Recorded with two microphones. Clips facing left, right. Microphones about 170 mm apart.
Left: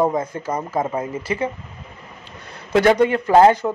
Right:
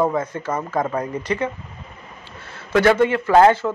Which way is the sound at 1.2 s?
5° left (ahead or behind).